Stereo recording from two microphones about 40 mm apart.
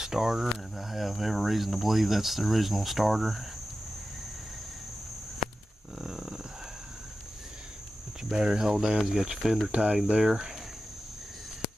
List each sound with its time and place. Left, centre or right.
0.0 s speech: centre
5.9 s a sound: centre
8.3 s speech: centre
9.7 s cricket: right
10.1 s speech: centre